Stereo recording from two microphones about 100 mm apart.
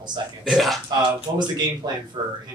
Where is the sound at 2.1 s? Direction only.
60° right (ahead or behind).